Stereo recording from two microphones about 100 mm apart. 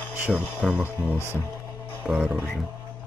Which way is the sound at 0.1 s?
20° right (ahead or behind).